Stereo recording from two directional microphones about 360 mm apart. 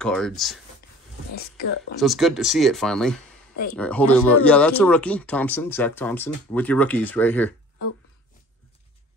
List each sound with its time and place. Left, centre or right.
0.0 s speech: centre
1.3 s speech: left
2.0 s speech: centre